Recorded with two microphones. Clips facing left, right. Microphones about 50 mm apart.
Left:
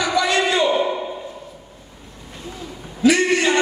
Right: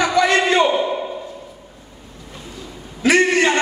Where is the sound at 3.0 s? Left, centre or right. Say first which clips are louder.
Right 1 dB; right.